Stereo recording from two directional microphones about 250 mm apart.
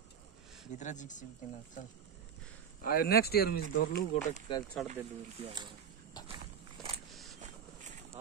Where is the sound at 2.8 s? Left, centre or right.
Left.